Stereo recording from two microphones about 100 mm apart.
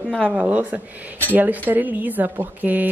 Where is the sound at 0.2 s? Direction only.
15° right (ahead or behind).